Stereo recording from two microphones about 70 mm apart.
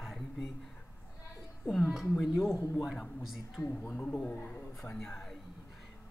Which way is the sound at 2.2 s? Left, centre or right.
Centre.